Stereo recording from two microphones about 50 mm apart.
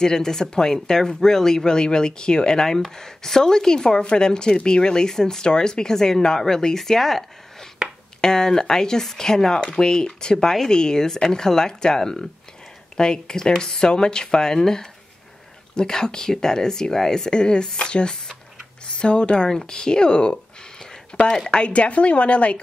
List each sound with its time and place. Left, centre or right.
0.0 s speech: centre
20.8 s a sound: centre
21.5 s a woman's voice: left